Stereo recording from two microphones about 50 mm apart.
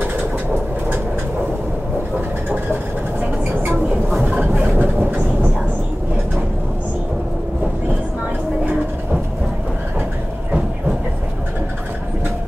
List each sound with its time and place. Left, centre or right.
2.7 s vehicle: right
4.6 s vehicle: right